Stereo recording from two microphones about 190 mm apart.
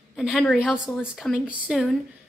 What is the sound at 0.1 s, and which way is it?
A woman's voice, centre (ahead or behind).